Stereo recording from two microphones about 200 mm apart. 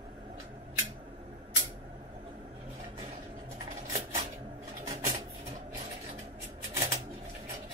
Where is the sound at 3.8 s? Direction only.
20° right (ahead or behind).